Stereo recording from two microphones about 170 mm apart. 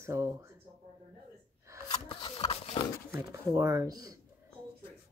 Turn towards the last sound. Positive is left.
turn(degrees=-20)  # may be behind; listen again after turning